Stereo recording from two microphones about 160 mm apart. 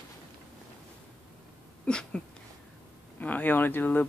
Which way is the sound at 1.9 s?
5° left (ahead or behind).